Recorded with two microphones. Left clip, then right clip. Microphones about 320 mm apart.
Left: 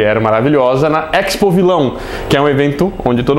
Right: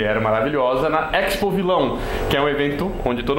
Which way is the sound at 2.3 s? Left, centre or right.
Left.